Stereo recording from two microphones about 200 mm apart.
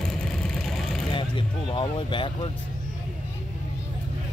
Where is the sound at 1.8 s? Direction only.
25° left (ahead or behind).